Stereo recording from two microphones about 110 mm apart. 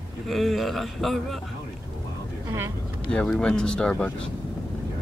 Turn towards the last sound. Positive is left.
turn(degrees=5)  # may be behind; listen again after turning